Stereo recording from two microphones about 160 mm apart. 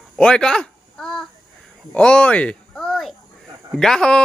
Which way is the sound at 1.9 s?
5° left (ahead or behind).